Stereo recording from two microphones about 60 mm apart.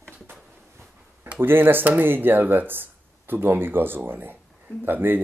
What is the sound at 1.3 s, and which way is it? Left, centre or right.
Speech, right.